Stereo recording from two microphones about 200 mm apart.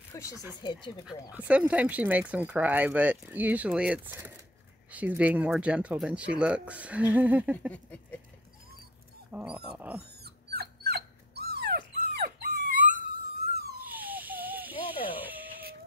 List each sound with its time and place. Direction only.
0.1 s a sound: 15° left (ahead or behind)
0.6 s speech: 20° left (ahead or behind)
1.3 s speech: 5° right (ahead or behind)
7.7 s a sound: 5° left (ahead or behind)
9.3 s speech: 5° right (ahead or behind)
10.2 s dog: 55° right (ahead or behind)
13.8 s a sound: 10° right (ahead or behind)
14.8 s music: 25° left (ahead or behind)
15.1 s music: 10° right (ahead or behind)